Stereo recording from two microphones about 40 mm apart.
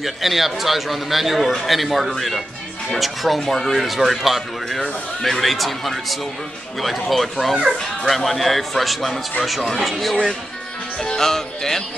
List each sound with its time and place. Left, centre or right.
0.0 s a man's voice: centre
4.8 s speech: centre
5.4 s a man's voice: centre
11.0 s speech: centre